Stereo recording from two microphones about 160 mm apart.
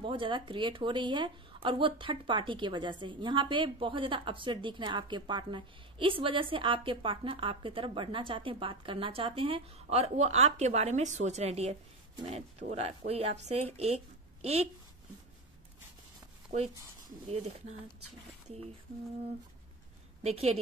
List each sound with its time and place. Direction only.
0.0 s speech: 30° right (ahead or behind)
17.3 s speech: 40° right (ahead or behind)
20.2 s speech: 40° right (ahead or behind)